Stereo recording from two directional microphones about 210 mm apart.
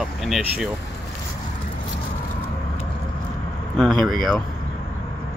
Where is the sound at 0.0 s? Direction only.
Centre (ahead or behind).